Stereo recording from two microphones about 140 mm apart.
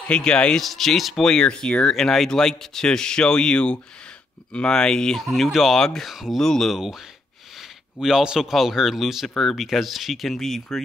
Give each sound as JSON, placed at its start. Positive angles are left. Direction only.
{"t": 0.0, "sound": "speech", "side_deg": 5}
{"t": 8.0, "sound": "speech", "side_deg": -5}